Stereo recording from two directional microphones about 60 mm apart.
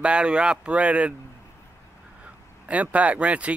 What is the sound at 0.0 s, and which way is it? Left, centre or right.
Speech, centre.